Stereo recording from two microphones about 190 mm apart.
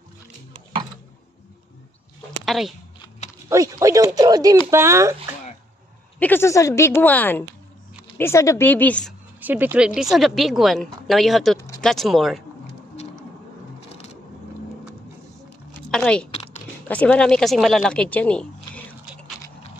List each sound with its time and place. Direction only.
2.4 s speech: centre (ahead or behind)
3.4 s speech: 15° right (ahead or behind)
6.1 s a woman's voice: 10° left (ahead or behind)
9.4 s speech: 10° right (ahead or behind)
15.9 s speech: 5° left (ahead or behind)